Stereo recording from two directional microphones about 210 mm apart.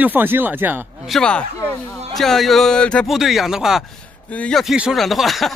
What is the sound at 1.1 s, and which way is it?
Speech, 5° left (ahead or behind).